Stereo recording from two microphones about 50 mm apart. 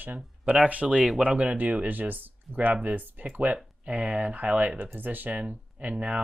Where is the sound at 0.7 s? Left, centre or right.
Right.